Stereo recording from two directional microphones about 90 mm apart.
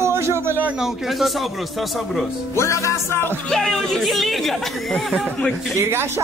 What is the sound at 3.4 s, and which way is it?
Speech, 5° left (ahead or behind).